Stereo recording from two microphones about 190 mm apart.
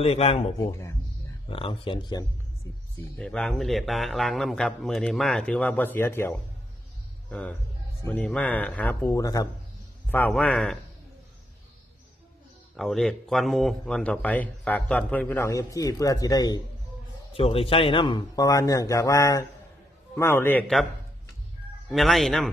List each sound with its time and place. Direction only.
0.0 s a man's voice: 30° left (ahead or behind)
0.6 s a man's voice: 15° left (ahead or behind)
1.5 s a man's voice: 30° left (ahead or behind)
3.2 s a man's voice: 5° left (ahead or behind)
12.7 s a man's voice: centre (ahead or behind); by 16.6 s 20° left (ahead or behind)
17.3 s a man's voice: 30° left (ahead or behind); by 20.8 s 5° left (ahead or behind)
21.9 s speech: centre (ahead or behind)